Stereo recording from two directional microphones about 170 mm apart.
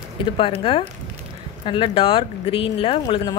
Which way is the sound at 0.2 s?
30° left (ahead or behind).